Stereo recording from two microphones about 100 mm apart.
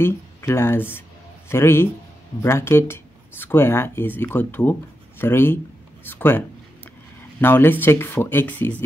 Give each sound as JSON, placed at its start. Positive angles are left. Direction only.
{"t": 0.0, "sound": "speech", "side_deg": 25}